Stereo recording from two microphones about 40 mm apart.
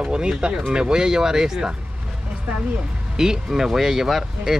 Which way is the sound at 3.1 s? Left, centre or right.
Centre.